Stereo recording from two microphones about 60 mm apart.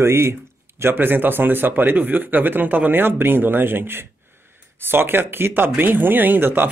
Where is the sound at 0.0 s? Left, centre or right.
Right.